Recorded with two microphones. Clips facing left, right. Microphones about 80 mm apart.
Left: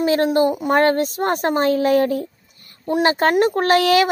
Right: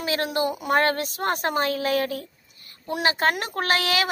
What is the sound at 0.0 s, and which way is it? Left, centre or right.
Speech, left.